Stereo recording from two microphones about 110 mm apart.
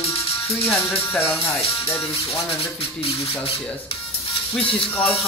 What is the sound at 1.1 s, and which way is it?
Speech, 20° left (ahead or behind).